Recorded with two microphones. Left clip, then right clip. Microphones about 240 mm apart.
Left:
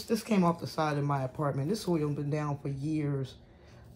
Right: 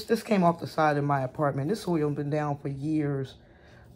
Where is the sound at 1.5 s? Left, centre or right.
Right.